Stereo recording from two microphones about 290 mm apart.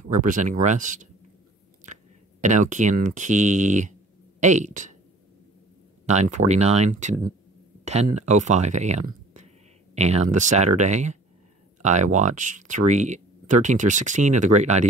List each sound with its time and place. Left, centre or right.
0.1 s speech: right
2.4 s speech: right
6.0 s speech: right